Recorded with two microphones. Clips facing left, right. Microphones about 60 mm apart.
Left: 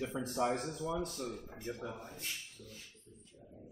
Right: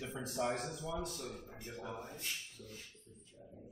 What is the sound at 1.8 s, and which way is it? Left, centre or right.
Speech, centre.